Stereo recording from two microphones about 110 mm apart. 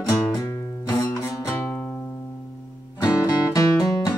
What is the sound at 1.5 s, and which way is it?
Music, 20° left (ahead or behind).